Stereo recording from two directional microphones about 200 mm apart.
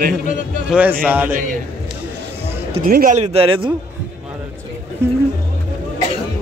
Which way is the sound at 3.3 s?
25° right (ahead or behind).